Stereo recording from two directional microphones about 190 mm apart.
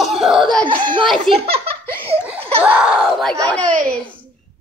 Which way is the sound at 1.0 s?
Centre (ahead or behind).